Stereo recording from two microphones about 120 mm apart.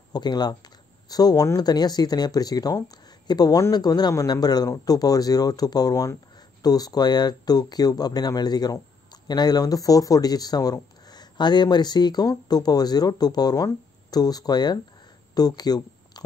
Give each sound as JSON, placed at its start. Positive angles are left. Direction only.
{"t": 0.1, "sound": "speech", "side_deg": 35}